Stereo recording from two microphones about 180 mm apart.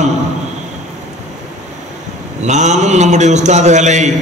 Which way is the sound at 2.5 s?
40° right (ahead or behind).